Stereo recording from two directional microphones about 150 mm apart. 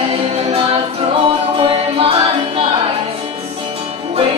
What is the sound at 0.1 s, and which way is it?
Music, 40° right (ahead or behind).